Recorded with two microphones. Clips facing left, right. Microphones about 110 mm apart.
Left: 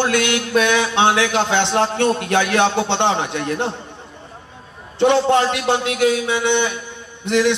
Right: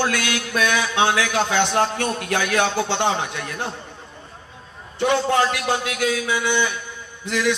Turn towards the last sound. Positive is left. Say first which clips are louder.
# left 6 dB
turn(degrees=25)  # may be behind; listen again after turning